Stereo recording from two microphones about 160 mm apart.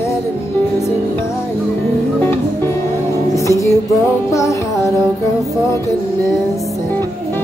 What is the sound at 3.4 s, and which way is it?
Music, 20° left (ahead or behind).